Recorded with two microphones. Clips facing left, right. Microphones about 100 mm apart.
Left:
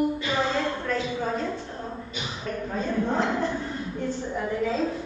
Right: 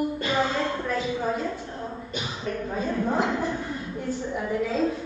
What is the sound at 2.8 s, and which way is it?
Speech, 5° right (ahead or behind).